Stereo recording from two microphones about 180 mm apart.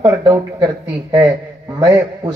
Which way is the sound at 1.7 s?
20° right (ahead or behind).